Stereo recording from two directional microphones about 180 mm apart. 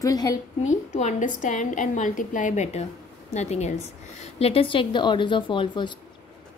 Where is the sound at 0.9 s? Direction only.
45° left (ahead or behind); by 5.9 s 25° left (ahead or behind).